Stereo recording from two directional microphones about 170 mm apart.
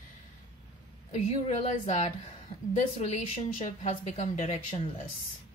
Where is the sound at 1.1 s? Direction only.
40° left (ahead or behind).